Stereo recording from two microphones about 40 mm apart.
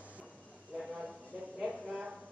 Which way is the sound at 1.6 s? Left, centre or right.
Centre.